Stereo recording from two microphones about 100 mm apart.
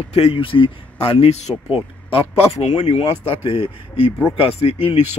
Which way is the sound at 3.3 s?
70° left (ahead or behind).